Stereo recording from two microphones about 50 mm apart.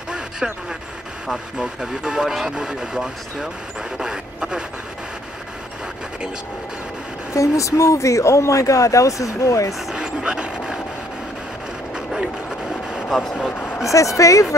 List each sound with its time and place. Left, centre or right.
0.1 s a sound: centre
1.2 s speech: centre
4.0 s a sound: centre
7.3 s speech: left
9.9 s dog: centre
11.9 s vehicle: centre
13.1 s speech: centre
13.5 s vehicle: left
13.8 s speech: left